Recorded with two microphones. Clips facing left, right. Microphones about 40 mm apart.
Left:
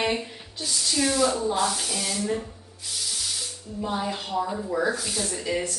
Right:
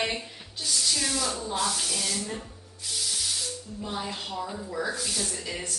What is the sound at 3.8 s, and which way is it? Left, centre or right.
Speech, centre.